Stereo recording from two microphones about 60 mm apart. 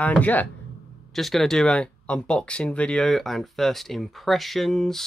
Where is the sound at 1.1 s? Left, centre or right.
Centre.